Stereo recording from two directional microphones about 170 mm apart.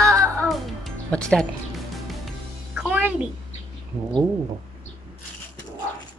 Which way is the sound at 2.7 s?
10° right (ahead or behind).